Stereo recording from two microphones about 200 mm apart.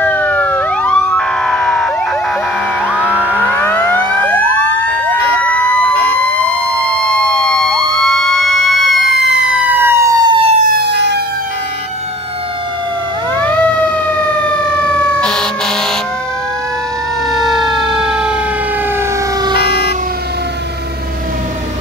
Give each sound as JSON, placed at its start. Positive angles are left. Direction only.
{"t": 0.0, "sound": "emergency vehicle", "side_deg": 10}
{"t": 2.9, "sound": "music", "side_deg": -5}
{"t": 4.0, "sound": "emergency vehicle", "side_deg": -20}
{"t": 7.1, "sound": "emergency vehicle", "side_deg": 5}
{"t": 10.7, "sound": "emergency vehicle", "side_deg": -55}
{"t": 13.4, "sound": "emergency vehicle", "side_deg": 10}
{"t": 17.3, "sound": "emergency vehicle", "side_deg": 0}
{"t": 19.5, "sound": "vehicle", "side_deg": 50}